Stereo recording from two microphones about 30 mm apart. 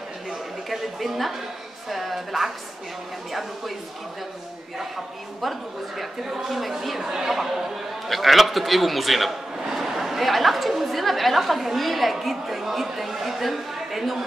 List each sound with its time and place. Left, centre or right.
0.3 s a sound: centre
1.9 s a woman's voice: centre
5.4 s a woman's voice: centre
7.1 s a man's voice: centre